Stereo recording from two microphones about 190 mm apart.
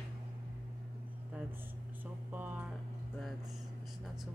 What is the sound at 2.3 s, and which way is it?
Music, 10° right (ahead or behind).